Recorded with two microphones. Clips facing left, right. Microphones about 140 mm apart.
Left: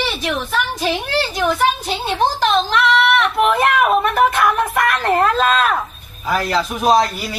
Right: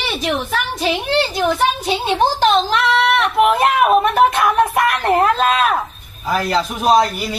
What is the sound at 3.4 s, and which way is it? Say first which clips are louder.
A woman's voice: right 2 dB; 15° right (ahead or behind).